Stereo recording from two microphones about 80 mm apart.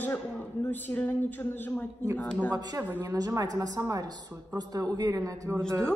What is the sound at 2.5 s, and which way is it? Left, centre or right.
Speech, right.